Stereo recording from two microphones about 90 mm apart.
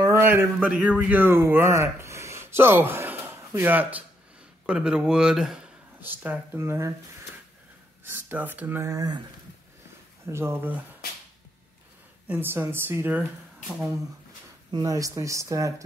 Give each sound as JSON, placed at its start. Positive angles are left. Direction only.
{"t": 0.1, "sound": "speech", "side_deg": -25}
{"t": 4.6, "sound": "speech", "side_deg": -10}
{"t": 5.9, "sound": "a woman's voice", "side_deg": -20}
{"t": 8.0, "sound": "speech", "side_deg": -20}
{"t": 8.9, "sound": "speech", "side_deg": -50}
{"t": 10.2, "sound": "a woman's voice", "side_deg": -30}
{"t": 12.3, "sound": "a woman's voice", "side_deg": -25}
{"t": 14.7, "sound": "speech", "side_deg": -55}
{"t": 15.0, "sound": "speech", "side_deg": -35}